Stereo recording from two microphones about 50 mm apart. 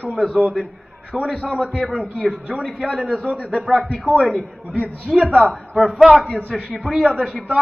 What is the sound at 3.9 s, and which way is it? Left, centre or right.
Speech, right.